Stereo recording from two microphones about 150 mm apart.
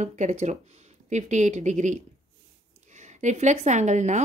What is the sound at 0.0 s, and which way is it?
A woman's voice, 50° right (ahead or behind).